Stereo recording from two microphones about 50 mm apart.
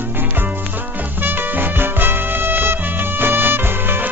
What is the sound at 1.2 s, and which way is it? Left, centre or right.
Music, right.